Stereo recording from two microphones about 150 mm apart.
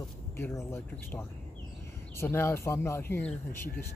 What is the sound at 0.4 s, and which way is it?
Speech, 15° left (ahead or behind).